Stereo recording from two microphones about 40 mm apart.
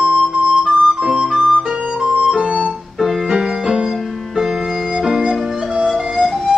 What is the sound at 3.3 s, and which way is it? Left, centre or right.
Music, centre.